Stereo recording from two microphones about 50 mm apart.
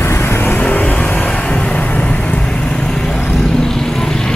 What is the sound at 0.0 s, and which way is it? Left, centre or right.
Vehicle, left.